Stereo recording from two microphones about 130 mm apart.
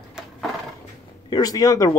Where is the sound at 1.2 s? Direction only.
30° left (ahead or behind).